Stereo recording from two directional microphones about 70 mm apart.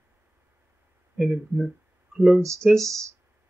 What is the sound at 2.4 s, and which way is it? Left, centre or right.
Speech, right.